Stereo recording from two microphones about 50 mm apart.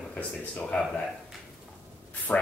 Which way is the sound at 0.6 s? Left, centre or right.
Centre.